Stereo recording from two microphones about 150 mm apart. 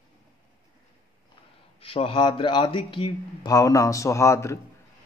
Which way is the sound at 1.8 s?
40° left (ahead or behind).